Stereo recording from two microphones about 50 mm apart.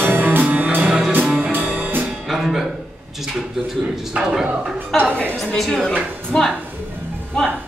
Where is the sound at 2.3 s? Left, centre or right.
Centre.